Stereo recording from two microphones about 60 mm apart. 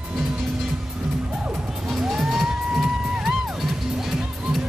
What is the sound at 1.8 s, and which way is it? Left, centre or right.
Music, centre.